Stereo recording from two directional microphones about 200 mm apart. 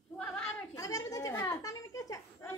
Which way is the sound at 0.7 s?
15° left (ahead or behind).